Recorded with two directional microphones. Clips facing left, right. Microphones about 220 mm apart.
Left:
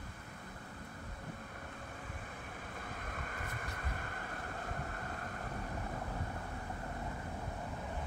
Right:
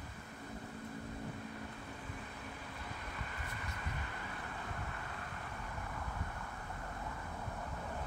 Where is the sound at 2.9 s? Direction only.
50° left (ahead or behind).